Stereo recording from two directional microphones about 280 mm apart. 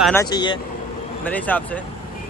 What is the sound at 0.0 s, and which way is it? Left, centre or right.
Speech, centre.